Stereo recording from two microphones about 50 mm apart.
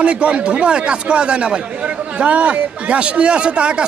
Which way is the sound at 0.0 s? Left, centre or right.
Right.